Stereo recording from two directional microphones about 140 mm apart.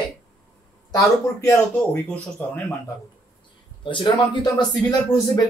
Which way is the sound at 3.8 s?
35° left (ahead or behind).